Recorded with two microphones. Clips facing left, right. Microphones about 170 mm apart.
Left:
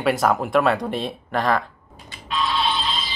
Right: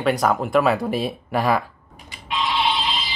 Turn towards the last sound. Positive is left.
turn(degrees=-20)  # may be behind; listen again after turning